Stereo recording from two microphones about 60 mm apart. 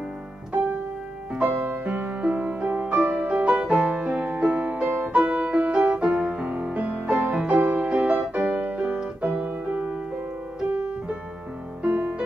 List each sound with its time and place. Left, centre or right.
1.3 s music: right
11.8 s music: right